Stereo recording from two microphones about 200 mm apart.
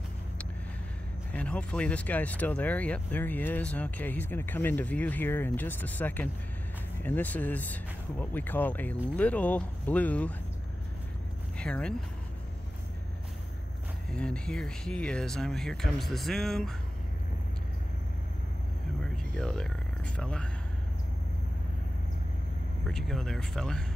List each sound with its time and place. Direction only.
1.3 s speech: 5° left (ahead or behind)
11.5 s speech: 5° left (ahead or behind)
14.1 s speech: 5° left (ahead or behind)
19.0 s a sound: centre (ahead or behind)
20.2 s speech: 5° left (ahead or behind)
22.8 s speech: centre (ahead or behind)